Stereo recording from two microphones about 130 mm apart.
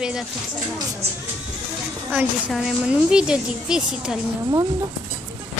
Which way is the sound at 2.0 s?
10° right (ahead or behind).